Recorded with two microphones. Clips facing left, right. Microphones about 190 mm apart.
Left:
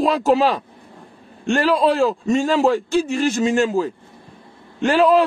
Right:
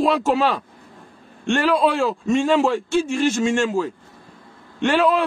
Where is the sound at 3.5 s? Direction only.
5° left (ahead or behind).